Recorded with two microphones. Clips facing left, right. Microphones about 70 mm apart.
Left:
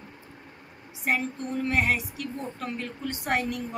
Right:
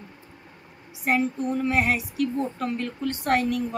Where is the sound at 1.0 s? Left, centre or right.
Centre.